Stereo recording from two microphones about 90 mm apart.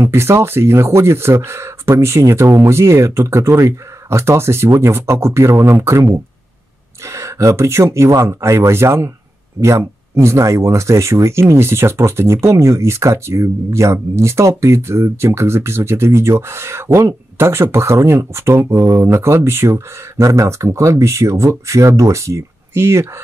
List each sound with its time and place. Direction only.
0.0 s speech: 30° right (ahead or behind)
7.1 s speech: 35° right (ahead or behind)